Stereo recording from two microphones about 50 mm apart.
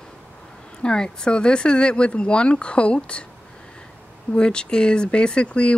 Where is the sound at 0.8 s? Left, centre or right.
Centre.